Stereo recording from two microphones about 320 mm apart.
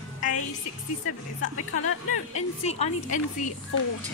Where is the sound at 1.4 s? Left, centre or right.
Left.